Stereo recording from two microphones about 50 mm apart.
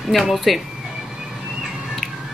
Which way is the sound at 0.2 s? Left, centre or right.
Centre.